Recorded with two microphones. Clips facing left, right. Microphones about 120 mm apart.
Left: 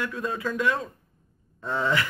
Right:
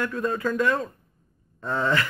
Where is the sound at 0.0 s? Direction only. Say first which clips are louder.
Right 4 dB; centre (ahead or behind).